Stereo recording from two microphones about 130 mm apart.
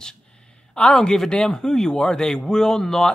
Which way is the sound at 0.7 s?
5° left (ahead or behind).